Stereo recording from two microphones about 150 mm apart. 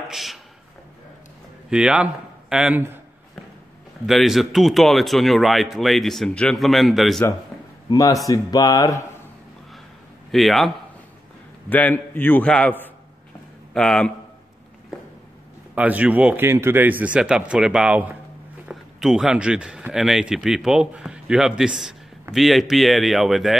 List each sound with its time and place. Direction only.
0.1 s speech: centre (ahead or behind)
1.7 s speech: 5° right (ahead or behind)
4.0 s speech: centre (ahead or behind)
7.9 s speech: 25° left (ahead or behind)
10.3 s speech: centre (ahead or behind)
11.7 s a man's voice: 10° left (ahead or behind)
15.7 s speech: 10° right (ahead or behind)